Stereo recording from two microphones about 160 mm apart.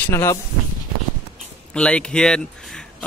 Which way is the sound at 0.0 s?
15° left (ahead or behind).